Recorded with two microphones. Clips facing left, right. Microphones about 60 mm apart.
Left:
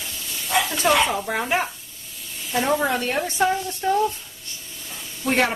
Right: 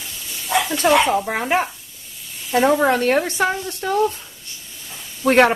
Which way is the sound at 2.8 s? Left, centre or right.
Right.